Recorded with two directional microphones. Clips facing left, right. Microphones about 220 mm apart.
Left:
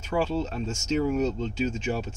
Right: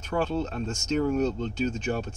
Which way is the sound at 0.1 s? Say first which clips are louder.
Left 1 dB; 5° left (ahead or behind).